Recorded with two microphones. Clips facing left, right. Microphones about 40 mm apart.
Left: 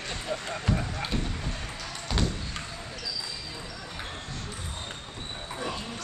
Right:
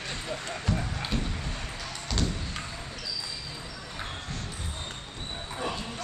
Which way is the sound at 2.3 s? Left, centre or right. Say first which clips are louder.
Even; centre.